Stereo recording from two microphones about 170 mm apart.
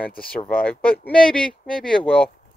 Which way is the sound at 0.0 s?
10° left (ahead or behind).